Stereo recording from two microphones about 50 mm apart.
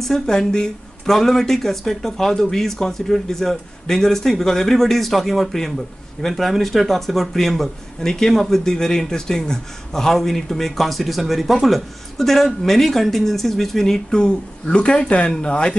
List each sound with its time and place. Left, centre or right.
0.0 s speech: centre
13.9 s speech: centre